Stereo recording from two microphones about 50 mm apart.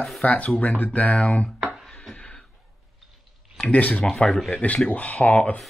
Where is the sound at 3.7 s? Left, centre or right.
Left.